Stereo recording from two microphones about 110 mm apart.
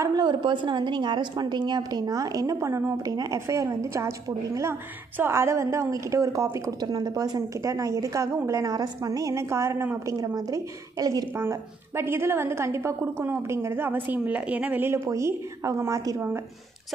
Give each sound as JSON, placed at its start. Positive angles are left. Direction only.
{"t": 0.0, "sound": "a woman's voice", "side_deg": -40}
{"t": 10.1, "sound": "a woman's voice", "side_deg": -35}
{"t": 15.0, "sound": "a woman's voice", "side_deg": -30}